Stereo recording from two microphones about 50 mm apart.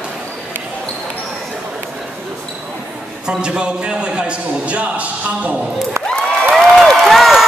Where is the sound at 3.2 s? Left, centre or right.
Centre.